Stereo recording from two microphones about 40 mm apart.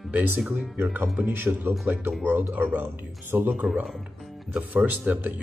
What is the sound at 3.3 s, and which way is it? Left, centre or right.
Speech, right.